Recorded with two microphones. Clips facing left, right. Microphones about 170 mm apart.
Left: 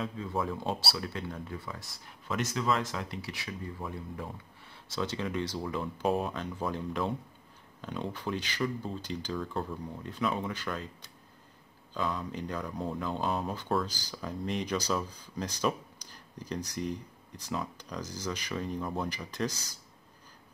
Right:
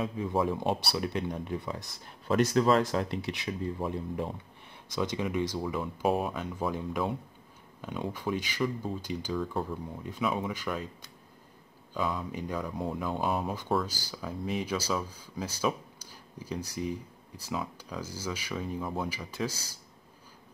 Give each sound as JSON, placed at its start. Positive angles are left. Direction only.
{"t": 0.3, "sound": "speech", "side_deg": -25}
{"t": 2.2, "sound": "speech", "side_deg": -40}
{"t": 3.2, "sound": "speech", "side_deg": -20}
{"t": 11.9, "sound": "speech", "side_deg": -10}